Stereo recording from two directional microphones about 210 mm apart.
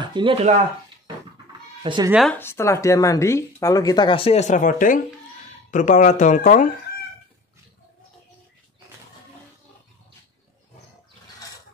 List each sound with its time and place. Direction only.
0.0 s speech: 20° right (ahead or behind)
1.8 s speech: 25° right (ahead or behind)
2.0 s speech: centre (ahead or behind)
2.3 s speech: 10° left (ahead or behind); by 6.7 s 40° left (ahead or behind)